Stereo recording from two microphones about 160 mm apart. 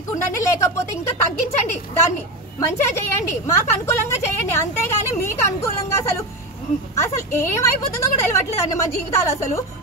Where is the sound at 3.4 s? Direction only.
20° left (ahead or behind).